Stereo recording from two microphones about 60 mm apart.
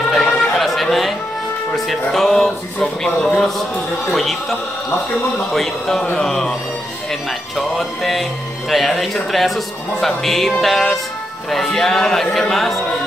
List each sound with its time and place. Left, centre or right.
0.1 s chatter: centre
1.7 s speech: centre